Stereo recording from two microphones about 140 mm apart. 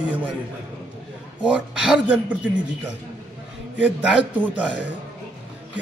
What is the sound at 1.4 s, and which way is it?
Speech, 5° right (ahead or behind).